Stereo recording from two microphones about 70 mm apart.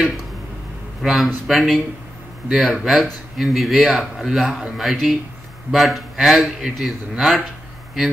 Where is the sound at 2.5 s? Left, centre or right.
Centre.